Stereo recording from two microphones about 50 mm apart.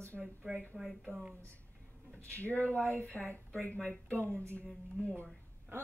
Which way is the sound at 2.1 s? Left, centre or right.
Left.